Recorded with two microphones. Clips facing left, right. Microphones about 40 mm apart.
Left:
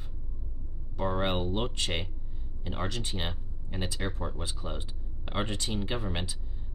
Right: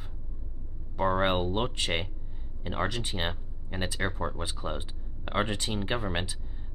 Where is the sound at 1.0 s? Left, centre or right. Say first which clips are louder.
Right 4 dB; centre.